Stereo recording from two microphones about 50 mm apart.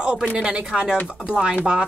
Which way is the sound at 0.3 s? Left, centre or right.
Centre.